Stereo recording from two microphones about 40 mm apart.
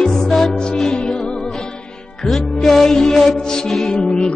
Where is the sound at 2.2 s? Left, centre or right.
Centre.